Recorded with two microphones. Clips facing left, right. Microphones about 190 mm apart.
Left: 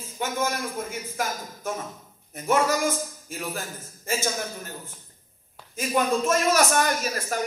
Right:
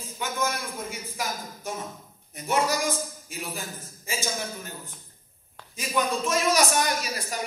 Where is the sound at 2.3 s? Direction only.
45° left (ahead or behind).